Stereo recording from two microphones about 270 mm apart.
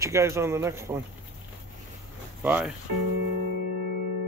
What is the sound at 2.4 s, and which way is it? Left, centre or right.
Speech, centre.